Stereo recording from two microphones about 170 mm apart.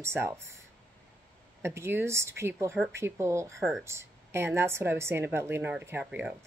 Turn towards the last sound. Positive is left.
turn(degrees=-10)  # may be behind; listen again after turning